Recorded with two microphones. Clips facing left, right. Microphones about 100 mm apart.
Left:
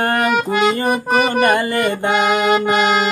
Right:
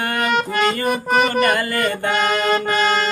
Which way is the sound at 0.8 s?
15° left (ahead or behind).